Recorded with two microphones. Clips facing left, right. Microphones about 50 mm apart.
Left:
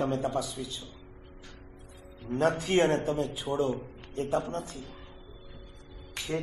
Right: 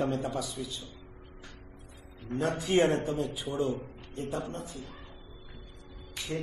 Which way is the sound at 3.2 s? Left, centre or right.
Centre.